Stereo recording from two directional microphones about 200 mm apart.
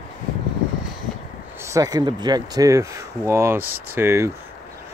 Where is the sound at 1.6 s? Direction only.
15° right (ahead or behind).